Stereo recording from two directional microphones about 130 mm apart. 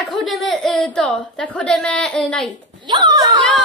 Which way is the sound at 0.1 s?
Centre (ahead or behind).